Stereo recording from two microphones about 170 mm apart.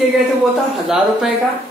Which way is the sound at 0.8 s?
5° right (ahead or behind).